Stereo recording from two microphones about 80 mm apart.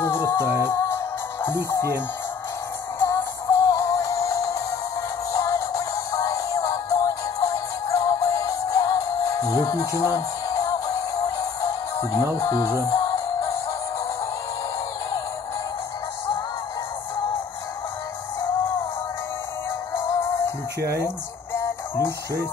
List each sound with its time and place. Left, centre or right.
0.0 s music: left
3.1 s music: left
20.1 s music: left